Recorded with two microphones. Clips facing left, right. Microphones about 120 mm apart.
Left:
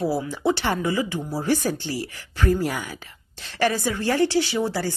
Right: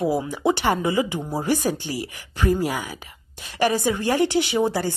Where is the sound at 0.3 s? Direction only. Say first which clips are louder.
Right 2 dB; 15° right (ahead or behind).